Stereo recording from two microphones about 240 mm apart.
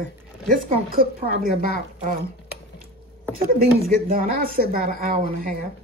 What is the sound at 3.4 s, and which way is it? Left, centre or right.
Speech, right.